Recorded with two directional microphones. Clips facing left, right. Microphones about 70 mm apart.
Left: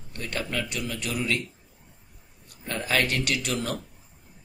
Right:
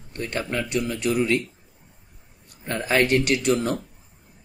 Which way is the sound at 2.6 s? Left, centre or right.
Right.